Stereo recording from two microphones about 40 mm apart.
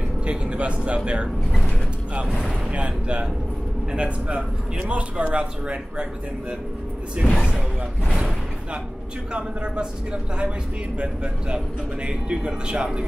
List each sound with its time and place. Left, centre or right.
0.2 s speech: right
2.7 s a man's voice: right
7.2 s speech: left
9.3 s a man's voice: right